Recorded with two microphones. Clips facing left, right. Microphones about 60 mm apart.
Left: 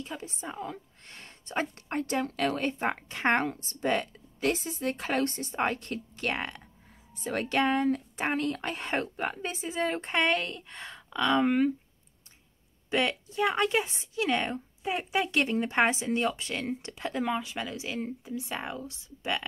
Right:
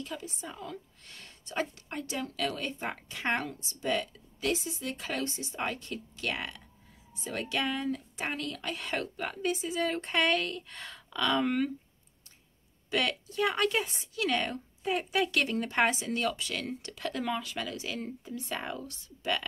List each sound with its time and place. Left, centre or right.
0.0 s a woman's voice: left
12.9 s a woman's voice: left